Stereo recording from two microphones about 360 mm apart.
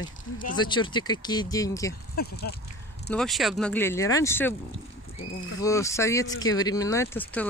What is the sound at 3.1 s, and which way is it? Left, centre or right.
Speech, centre.